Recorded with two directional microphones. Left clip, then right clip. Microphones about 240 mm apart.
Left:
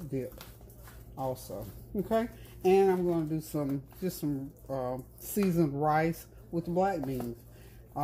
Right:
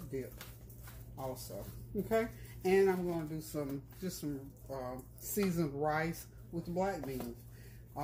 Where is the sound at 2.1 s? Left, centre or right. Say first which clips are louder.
Left 3 dB; left.